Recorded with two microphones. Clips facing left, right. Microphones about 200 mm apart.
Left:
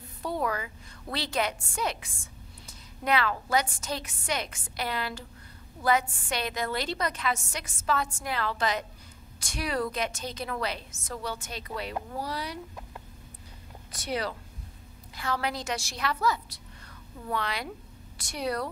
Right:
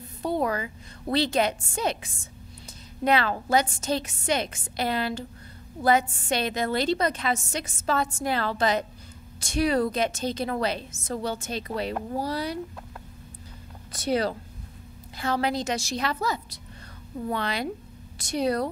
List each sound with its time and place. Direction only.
0.2 s a woman's voice: 25° right (ahead or behind)
13.9 s a woman's voice: 30° right (ahead or behind)